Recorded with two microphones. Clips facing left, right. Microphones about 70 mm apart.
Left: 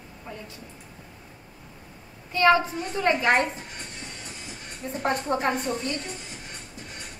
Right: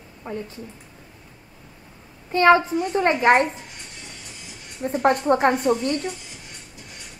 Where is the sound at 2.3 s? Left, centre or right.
Right.